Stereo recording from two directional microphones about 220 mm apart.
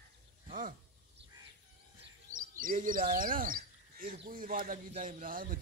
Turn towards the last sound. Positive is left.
turn(degrees=-40)  # may be behind; listen again after turning